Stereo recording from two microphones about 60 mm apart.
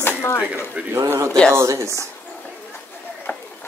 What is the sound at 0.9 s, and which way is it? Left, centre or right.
Speech, right.